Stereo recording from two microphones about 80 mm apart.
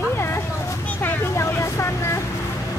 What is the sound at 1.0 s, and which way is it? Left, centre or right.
Vehicle, left.